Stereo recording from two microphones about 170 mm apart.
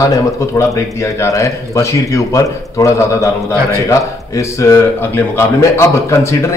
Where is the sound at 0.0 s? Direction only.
20° left (ahead or behind).